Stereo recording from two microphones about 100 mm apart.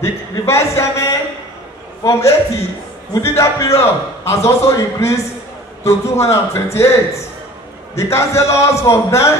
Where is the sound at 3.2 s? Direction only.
30° left (ahead or behind).